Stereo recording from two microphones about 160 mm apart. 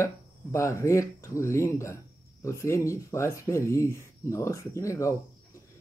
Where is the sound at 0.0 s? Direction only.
20° left (ahead or behind).